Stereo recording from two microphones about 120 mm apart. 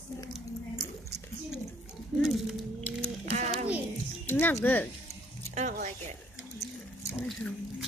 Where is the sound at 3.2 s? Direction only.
65° right (ahead or behind).